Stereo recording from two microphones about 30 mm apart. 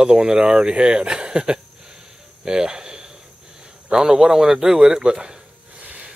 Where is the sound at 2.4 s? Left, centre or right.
Right.